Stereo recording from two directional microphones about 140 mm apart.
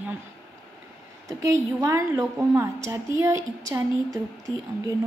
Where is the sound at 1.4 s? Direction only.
25° right (ahead or behind).